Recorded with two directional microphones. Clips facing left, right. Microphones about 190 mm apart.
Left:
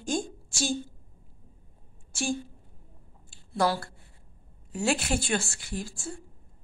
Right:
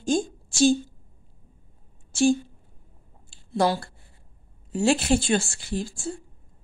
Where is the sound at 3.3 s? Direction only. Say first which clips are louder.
Right 3 dB; 25° right (ahead or behind).